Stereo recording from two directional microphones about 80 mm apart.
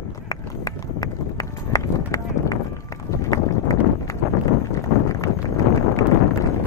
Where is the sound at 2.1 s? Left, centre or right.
Left.